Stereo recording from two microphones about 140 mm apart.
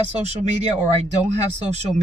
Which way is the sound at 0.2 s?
50° right (ahead or behind).